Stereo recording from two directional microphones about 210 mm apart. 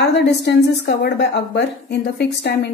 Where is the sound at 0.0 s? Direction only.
55° left (ahead or behind).